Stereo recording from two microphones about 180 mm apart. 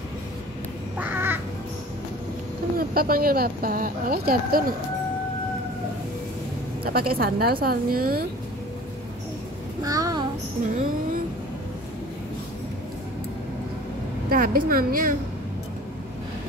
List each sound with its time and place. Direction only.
0.9 s crow: 10° right (ahead or behind)
2.8 s speech: 55° right (ahead or behind)
6.8 s speech: 55° right (ahead or behind)
9.8 s child singing: 20° right (ahead or behind)
14.3 s a woman's voice: 55° right (ahead or behind)